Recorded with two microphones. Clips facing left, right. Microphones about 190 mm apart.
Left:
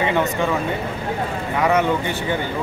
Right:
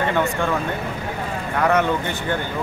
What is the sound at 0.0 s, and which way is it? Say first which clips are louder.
Speech: left 1 dB; 15° left (ahead or behind).